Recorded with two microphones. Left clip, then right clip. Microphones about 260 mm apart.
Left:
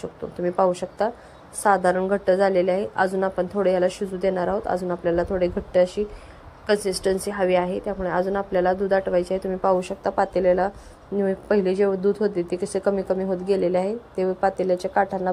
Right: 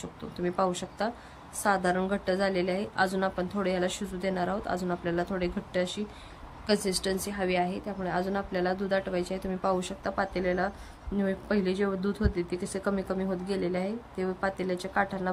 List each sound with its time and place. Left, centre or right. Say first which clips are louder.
0.4 s speech: left 8 dB; centre
6.7 s speech: left 7 dB; centre
10.2 s speech: left 10 dB; centre
11.8 s speech: left 10 dB; centre
12.5 s speech: left 9 dB; centre